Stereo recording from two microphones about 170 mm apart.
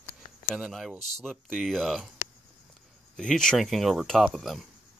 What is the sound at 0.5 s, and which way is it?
Speech, centre (ahead or behind).